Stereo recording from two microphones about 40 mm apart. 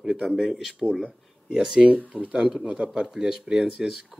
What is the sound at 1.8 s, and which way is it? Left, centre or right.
Speech, right.